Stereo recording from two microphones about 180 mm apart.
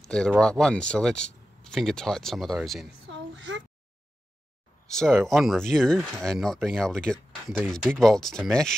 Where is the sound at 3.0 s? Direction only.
90° right.